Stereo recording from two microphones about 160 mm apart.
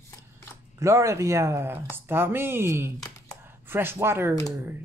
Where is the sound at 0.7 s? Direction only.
20° right (ahead or behind).